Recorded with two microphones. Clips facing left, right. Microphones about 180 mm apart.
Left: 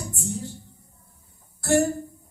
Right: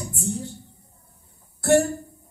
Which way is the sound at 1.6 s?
60° right (ahead or behind).